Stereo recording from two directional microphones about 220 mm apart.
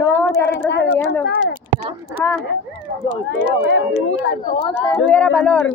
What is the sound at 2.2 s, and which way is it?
Speech, 10° left (ahead or behind).